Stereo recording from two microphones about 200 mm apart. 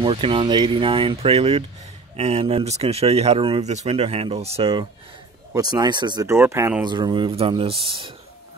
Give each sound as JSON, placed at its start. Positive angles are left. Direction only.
{"t": 0.0, "sound": "speech", "side_deg": -25}